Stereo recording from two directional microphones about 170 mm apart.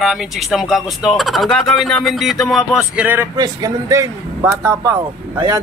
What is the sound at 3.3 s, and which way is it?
Speech, 25° right (ahead or behind).